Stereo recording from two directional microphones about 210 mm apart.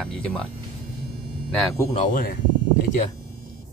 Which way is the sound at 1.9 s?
40° left (ahead or behind).